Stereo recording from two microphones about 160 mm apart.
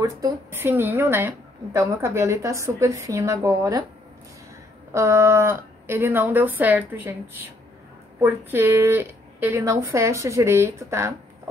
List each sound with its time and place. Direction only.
0.0 s speech: 15° right (ahead or behind)
4.9 s speech: 15° right (ahead or behind)
8.2 s speech: 15° right (ahead or behind)